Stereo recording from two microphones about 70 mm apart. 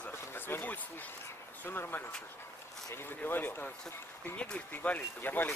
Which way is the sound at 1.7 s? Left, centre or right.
Left.